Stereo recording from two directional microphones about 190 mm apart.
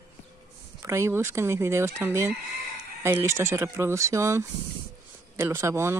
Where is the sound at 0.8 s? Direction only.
15° right (ahead or behind).